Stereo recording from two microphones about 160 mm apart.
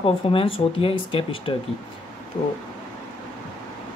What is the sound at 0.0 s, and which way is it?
Speech, 35° left (ahead or behind).